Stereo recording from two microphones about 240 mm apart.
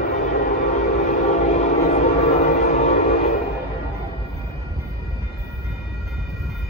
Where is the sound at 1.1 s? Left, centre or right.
Left.